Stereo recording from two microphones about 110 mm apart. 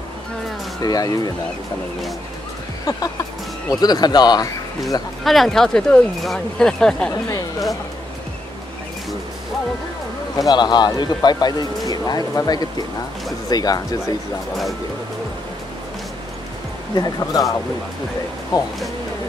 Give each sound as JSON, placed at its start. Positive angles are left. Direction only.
{"t": 0.8, "sound": "speech", "side_deg": 35}
{"t": 2.8, "sound": "speech", "side_deg": 35}
{"t": 5.2, "sound": "speech", "side_deg": 0}
{"t": 10.3, "sound": "speech", "side_deg": 40}
{"t": 16.9, "sound": "speech", "side_deg": 35}